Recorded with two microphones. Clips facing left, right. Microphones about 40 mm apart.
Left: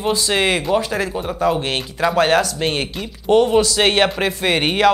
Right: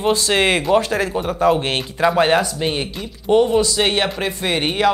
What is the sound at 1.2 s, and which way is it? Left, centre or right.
Speech, right.